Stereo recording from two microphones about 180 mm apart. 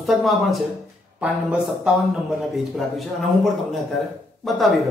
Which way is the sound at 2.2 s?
Centre (ahead or behind).